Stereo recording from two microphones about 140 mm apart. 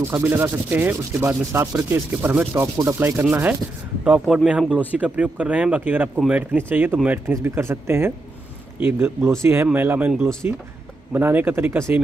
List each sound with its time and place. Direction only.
0.1 s rub: 15° right (ahead or behind)
4.0 s speech: 10° right (ahead or behind)
4.5 s rub: 5° right (ahead or behind)